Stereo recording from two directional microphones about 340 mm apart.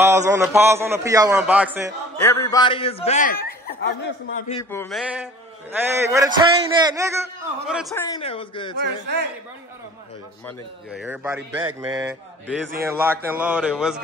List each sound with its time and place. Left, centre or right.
0.0 s a man's voice: centre
2.1 s a man's voice: centre; by 4.6 s left
4.6 s a man's voice: centre
5.7 s a man's voice: centre
8.1 s a man's voice: centre
8.8 s a man's voice: right
10.4 s speech: centre